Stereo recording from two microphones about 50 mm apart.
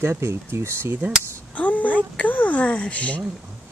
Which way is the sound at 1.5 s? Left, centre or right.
Left.